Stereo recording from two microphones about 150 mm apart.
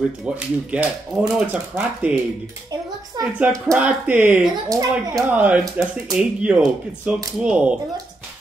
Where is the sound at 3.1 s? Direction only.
25° right (ahead or behind).